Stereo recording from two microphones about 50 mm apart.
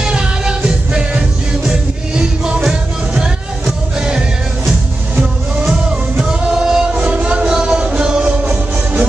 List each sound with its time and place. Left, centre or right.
0.0 s music: centre
5.7 s music: centre
6.9 s music: right